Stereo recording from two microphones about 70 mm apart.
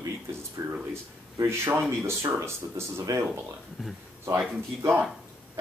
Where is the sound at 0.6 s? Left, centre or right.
Right.